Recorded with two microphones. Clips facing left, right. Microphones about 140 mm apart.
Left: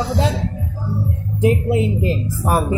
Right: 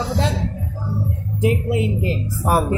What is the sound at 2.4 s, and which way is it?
Speech, 5° right (ahead or behind).